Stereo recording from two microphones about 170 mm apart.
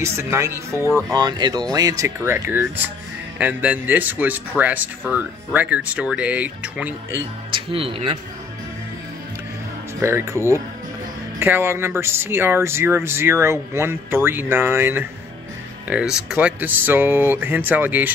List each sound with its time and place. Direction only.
0.0 s speech: 15° right (ahead or behind)
7.5 s speech: 30° right (ahead or behind)
10.0 s speech: 15° right (ahead or behind)